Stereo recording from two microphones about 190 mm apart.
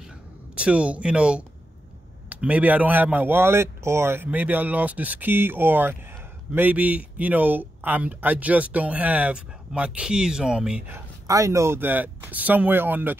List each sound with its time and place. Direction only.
0.6 s speech: 5° right (ahead or behind)
11.2 s speech: 15° right (ahead or behind)